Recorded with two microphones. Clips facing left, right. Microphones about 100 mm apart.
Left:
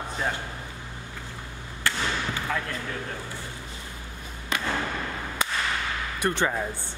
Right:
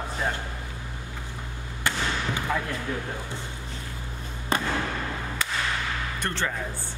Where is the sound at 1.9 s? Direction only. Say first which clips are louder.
Even; 20° right (ahead or behind).